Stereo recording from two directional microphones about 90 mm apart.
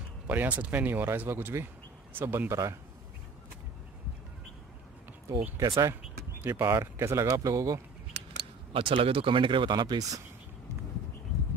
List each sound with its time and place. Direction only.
0.3 s speech: 20° right (ahead or behind)
5.6 s speech: 40° right (ahead or behind)
6.4 s speech: 30° right (ahead or behind)
7.2 s speech: 40° right (ahead or behind)
8.7 s speech: 80° right; by 10.2 s 50° right (ahead or behind)